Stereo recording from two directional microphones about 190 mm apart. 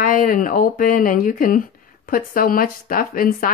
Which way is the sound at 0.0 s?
45° left (ahead or behind).